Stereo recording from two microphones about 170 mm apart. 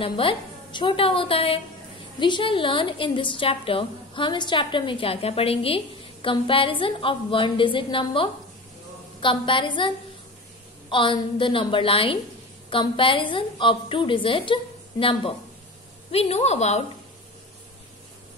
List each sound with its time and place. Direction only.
0.0 s a woman's voice: 30° left (ahead or behind)